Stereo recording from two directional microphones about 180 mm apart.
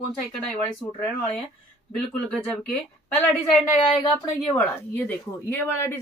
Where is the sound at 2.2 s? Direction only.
5° left (ahead or behind).